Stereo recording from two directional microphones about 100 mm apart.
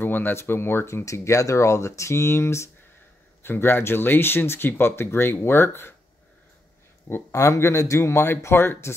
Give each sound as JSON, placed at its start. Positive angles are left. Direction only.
{"t": 0.0, "sound": "speech", "side_deg": 20}
{"t": 7.1, "sound": "speech", "side_deg": 25}